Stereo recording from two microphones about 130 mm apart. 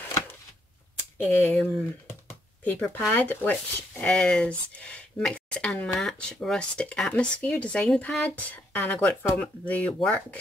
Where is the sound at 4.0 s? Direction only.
10° left (ahead or behind).